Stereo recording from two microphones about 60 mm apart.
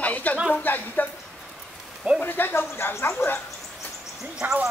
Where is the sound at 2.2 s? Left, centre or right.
Left.